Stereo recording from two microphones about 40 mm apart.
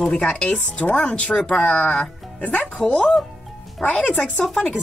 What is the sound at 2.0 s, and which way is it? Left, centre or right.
Music, left.